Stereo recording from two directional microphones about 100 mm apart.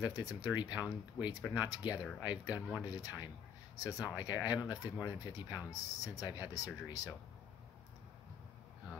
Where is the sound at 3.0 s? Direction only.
35° left (ahead or behind).